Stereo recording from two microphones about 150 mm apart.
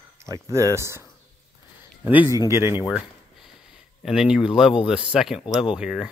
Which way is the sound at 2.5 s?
15° right (ahead or behind).